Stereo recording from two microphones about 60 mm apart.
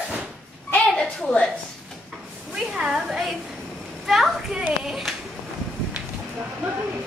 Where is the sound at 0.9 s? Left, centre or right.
Centre.